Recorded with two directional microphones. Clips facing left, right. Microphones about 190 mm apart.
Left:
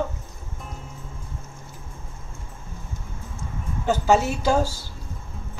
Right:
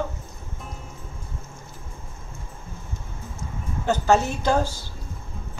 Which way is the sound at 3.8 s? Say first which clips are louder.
Even; 10° left (ahead or behind).